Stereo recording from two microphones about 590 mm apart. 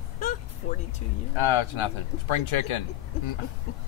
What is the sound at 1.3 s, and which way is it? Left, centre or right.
Speech, left.